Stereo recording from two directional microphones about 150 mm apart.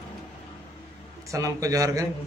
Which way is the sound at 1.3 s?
20° right (ahead or behind).